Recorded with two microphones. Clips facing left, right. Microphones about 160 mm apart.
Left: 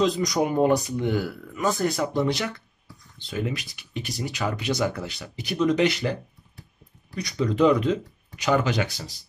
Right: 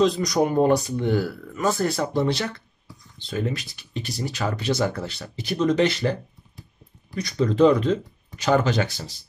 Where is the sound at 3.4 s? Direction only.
15° left (ahead or behind).